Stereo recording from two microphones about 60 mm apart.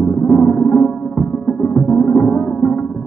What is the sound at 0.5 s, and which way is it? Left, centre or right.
Music, centre.